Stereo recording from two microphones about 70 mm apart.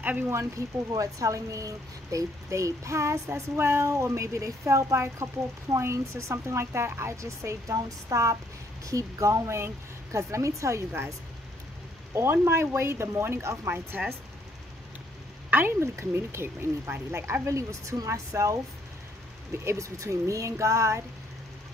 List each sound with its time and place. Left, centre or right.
0.3 s speech: right
12.2 s speech: right
15.5 s speech: right
19.6 s speech: right